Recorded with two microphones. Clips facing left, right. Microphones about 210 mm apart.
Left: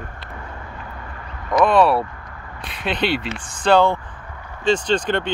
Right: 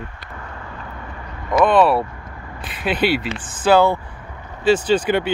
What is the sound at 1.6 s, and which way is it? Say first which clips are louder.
Speech: right 1 dB; centre (ahead or behind).